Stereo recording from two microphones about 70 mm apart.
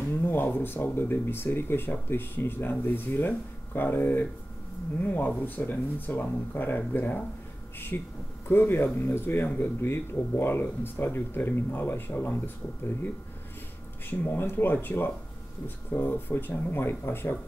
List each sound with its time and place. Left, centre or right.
0.1 s speech: left
14.2 s speech: left